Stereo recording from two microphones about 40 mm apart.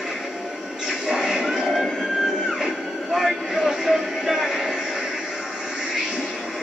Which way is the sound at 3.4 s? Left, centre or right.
Centre.